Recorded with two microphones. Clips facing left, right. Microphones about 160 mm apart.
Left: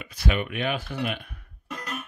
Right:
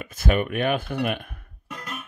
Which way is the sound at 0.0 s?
45° right (ahead or behind).